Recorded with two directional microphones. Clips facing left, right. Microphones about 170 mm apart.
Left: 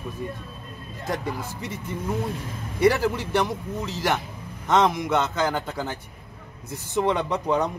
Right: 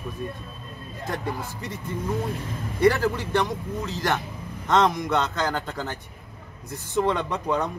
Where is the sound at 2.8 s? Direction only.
10° left (ahead or behind).